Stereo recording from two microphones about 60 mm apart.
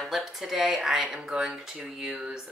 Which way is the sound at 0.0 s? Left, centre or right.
Centre.